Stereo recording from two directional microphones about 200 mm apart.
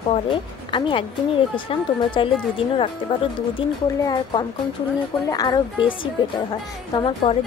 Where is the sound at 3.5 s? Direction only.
20° left (ahead or behind).